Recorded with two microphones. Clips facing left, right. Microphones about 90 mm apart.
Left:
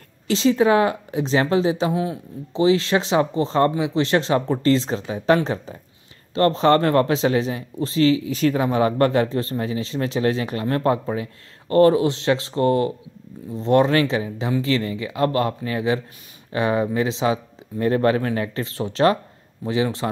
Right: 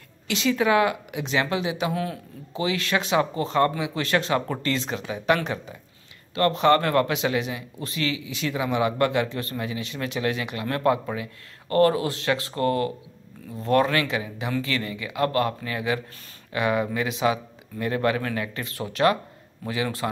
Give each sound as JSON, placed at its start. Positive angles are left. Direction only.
{"t": 0.3, "sound": "speech", "side_deg": 30}